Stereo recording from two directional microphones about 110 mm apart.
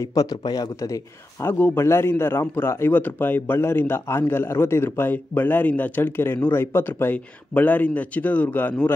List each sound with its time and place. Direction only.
0.1 s a man's voice: 35° left (ahead or behind)
1.4 s a man's voice: 20° left (ahead or behind)